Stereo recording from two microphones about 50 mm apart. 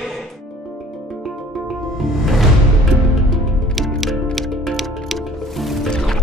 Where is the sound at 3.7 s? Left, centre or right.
Centre.